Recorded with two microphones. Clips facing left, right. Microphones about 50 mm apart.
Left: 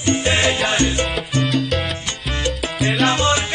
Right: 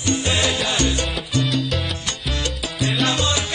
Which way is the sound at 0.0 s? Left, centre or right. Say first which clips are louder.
Left 4 dB; left.